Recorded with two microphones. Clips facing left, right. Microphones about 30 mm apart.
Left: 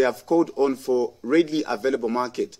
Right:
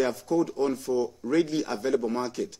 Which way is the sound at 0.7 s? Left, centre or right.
Centre.